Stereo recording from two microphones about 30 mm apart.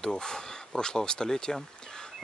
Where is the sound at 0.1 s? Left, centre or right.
Left.